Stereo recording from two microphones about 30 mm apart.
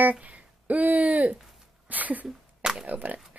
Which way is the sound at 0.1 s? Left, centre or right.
Right.